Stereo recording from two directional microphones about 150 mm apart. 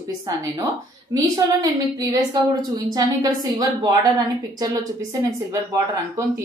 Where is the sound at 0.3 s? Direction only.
25° right (ahead or behind).